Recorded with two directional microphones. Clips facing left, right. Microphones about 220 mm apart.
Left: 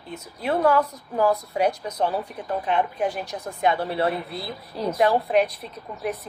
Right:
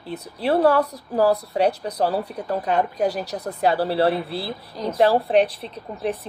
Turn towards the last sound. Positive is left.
turn(degrees=-30)  # may be behind; listen again after turning